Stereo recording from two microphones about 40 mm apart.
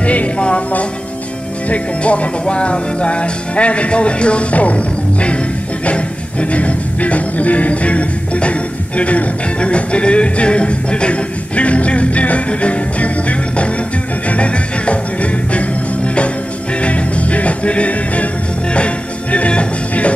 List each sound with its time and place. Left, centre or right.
0.0 s music: left
6.5 s music: left